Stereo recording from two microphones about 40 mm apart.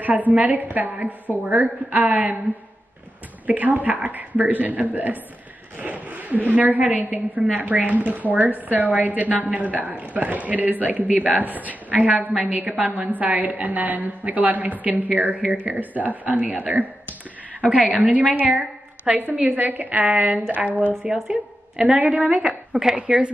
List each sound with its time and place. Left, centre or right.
0.0 s speech: right
3.4 s a woman's voice: right
18.0 s a woman's voice: right
19.5 s speech: right
21.0 s a woman's voice: right